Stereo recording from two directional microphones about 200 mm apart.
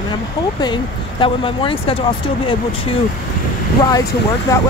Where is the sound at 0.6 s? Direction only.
25° left (ahead or behind).